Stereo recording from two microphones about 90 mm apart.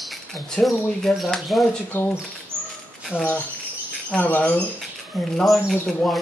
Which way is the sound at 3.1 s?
20° left (ahead or behind).